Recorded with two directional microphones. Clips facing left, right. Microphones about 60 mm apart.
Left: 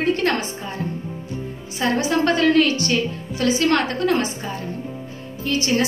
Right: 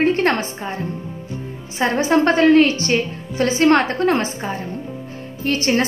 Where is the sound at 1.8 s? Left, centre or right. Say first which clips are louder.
Right 3 dB; right.